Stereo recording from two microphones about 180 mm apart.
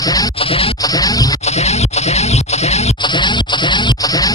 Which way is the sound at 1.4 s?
35° left (ahead or behind).